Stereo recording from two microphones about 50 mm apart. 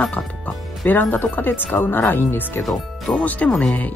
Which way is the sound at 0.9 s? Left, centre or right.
Left.